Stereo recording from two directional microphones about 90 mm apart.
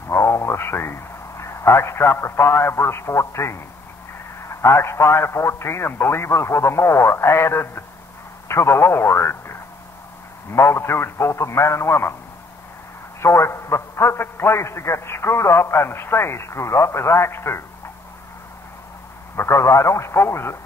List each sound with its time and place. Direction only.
0.1 s a man's voice: 30° left (ahead or behind)
13.2 s a man's voice: 30° left (ahead or behind)
19.3 s a man's voice: 30° left (ahead or behind)